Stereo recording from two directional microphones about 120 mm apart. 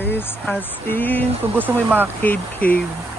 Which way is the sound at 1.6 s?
15° right (ahead or behind).